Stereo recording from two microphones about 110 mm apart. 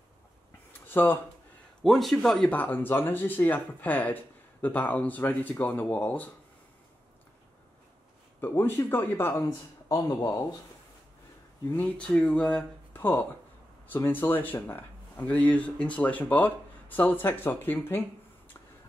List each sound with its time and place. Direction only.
0.8 s speech: 15° left (ahead or behind)
1.8 s speech: centre (ahead or behind); by 6.3 s 15° left (ahead or behind)
8.4 s speech: 20° left (ahead or behind)
9.8 s speech: 30° left (ahead or behind)
11.7 s speech: 10° left (ahead or behind)